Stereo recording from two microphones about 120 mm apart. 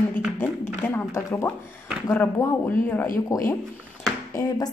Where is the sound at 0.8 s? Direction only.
20° left (ahead or behind).